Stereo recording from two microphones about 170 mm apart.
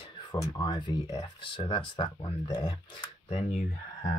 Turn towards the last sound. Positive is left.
turn(degrees=45)  # may be behind; listen again after turning